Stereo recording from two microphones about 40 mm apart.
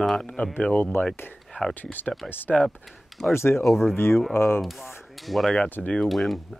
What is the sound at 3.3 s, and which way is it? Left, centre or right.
Speech, left.